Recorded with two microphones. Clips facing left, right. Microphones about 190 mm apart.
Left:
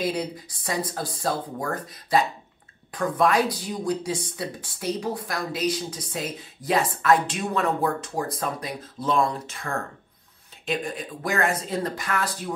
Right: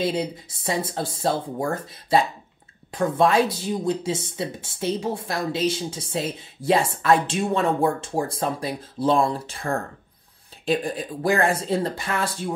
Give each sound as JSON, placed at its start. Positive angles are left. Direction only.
{"t": 0.0, "sound": "speech", "side_deg": -25}